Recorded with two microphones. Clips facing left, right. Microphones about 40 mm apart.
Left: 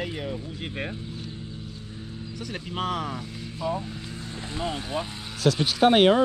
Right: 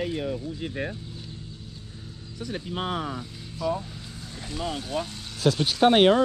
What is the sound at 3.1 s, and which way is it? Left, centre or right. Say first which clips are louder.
Vehicle: left 1 dB; left.